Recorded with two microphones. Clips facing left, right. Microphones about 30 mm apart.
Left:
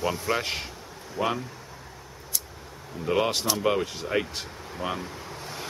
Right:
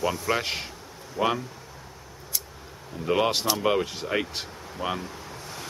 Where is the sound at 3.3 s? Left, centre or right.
Centre.